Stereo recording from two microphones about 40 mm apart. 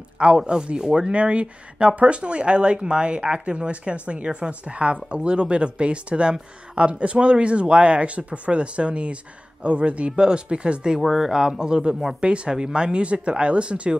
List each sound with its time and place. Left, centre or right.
0.4 s speech: centre
11.0 s speech: centre; by 13.9 s right